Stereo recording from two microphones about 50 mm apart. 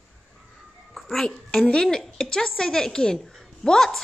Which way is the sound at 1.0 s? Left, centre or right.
Centre.